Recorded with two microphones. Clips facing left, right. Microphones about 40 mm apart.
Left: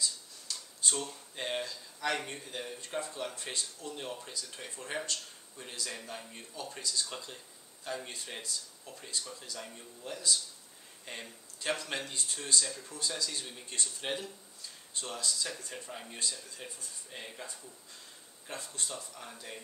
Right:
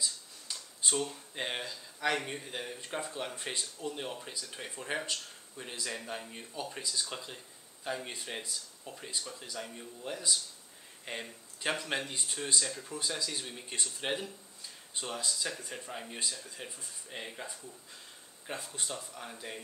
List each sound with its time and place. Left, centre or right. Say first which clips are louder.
0.0 s speech: left 1 dB; centre